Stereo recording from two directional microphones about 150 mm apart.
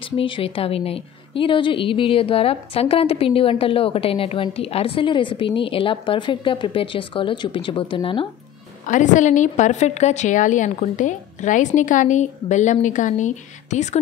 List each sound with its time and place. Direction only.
0.2 s a woman's voice: 35° left (ahead or behind)
8.8 s a woman's voice: 55° left (ahead or behind)